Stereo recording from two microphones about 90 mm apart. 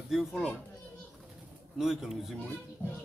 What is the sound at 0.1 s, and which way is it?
Speech, 5° right (ahead or behind).